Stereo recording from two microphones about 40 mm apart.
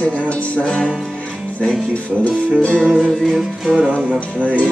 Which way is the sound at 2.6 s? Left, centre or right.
Centre.